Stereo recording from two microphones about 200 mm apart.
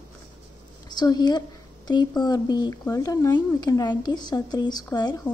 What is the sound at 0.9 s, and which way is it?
A woman's voice, 20° left (ahead or behind).